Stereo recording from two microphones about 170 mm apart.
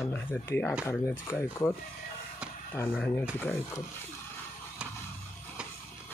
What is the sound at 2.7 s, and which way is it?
Speech, 15° left (ahead or behind).